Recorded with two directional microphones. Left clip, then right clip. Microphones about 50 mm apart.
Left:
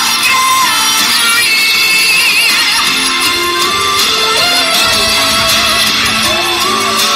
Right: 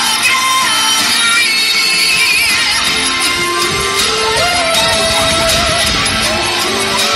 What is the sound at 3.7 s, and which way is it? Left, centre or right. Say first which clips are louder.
Music: left 3 dB; left.